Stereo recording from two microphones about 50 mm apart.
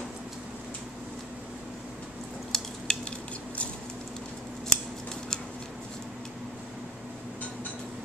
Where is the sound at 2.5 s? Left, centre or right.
Centre.